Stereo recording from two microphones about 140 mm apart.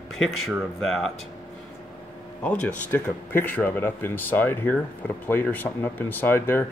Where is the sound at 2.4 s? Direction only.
10° left (ahead or behind).